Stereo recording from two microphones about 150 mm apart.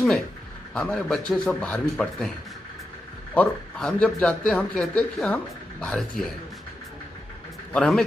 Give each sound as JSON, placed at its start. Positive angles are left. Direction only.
{"t": 0.7, "sound": "speech", "side_deg": 5}
{"t": 3.3, "sound": "a man's voice", "side_deg": 5}
{"t": 7.7, "sound": "speech", "side_deg": 5}